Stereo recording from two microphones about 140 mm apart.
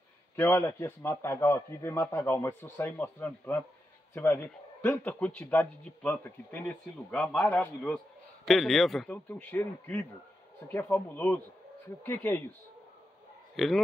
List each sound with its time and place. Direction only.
0.4 s a man's voice: 20° left (ahead or behind); by 9.1 s centre (ahead or behind)
9.1 s a man's voice: 15° left (ahead or behind)
13.6 s a man's voice: centre (ahead or behind)